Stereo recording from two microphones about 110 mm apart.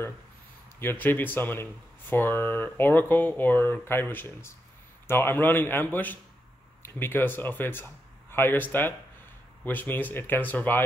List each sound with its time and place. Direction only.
0.7 s speech: 20° left (ahead or behind)